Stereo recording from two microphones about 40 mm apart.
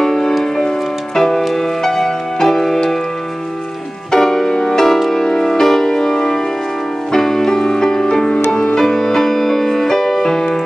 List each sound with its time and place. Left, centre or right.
0.0 s music: centre
4.1 s music: centre